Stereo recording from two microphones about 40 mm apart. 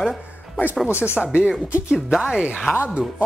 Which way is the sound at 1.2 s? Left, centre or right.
Right.